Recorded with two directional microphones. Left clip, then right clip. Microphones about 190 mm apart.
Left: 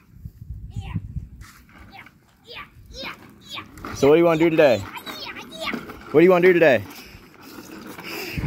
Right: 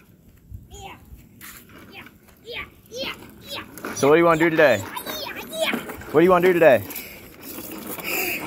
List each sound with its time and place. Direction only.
2.5 s children playing: 35° left (ahead or behind)
3.9 s speech: 35° left (ahead or behind)
6.1 s speech: 40° left (ahead or behind)
6.5 s speech: 30° left (ahead or behind)
8.0 s a sound: 10° left (ahead or behind)